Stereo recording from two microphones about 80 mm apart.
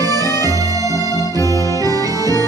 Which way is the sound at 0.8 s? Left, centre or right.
Left.